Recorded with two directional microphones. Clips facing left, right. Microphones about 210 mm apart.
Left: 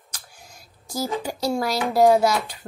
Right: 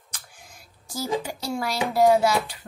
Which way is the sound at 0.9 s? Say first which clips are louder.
Left 1 dB; 40° left (ahead or behind).